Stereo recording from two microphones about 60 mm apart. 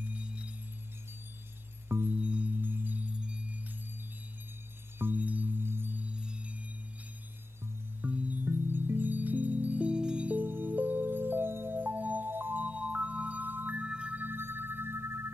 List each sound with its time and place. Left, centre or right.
0.0 s music: right
1.9 s music: right
2.1 s music: right
2.6 s music: right
3.2 s music: centre
4.9 s chime: right
5.2 s chime: right
5.9 s music: centre
8.0 s chime: right
10.4 s music: right
13.8 s music: centre
14.1 s music: right